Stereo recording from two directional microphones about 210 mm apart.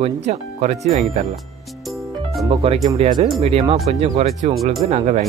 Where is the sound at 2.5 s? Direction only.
30° right (ahead or behind).